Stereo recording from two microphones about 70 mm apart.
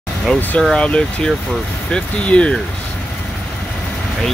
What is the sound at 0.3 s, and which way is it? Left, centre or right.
Speech, centre.